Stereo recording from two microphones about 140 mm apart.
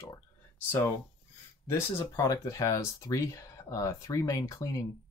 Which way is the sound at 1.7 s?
25° left (ahead or behind).